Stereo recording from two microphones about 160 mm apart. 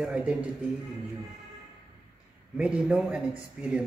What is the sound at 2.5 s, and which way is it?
A man's voice, 5° right (ahead or behind).